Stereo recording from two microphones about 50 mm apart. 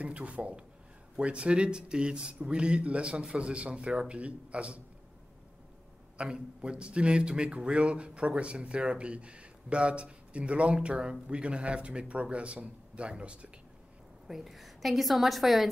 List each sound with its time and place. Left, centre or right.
0.0 s speech: right
6.1 s speech: right
14.2 s a woman's voice: centre